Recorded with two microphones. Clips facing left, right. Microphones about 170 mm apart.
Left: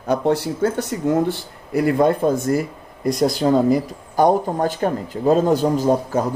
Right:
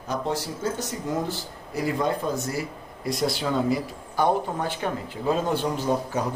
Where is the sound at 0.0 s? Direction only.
60° left (ahead or behind).